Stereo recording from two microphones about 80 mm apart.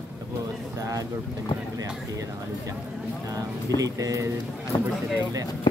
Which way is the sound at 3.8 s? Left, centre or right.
Right.